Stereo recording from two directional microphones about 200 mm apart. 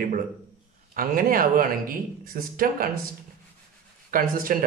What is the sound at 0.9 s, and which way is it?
Speech, 45° right (ahead or behind).